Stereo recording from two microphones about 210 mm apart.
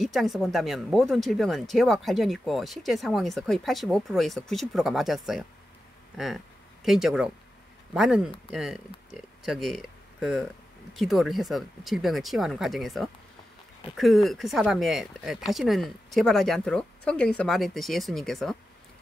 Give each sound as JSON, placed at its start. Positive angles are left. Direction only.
{"t": 0.0, "sound": "speech", "side_deg": 0}